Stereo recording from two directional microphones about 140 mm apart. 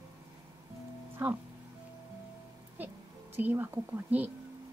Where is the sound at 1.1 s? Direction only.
15° right (ahead or behind).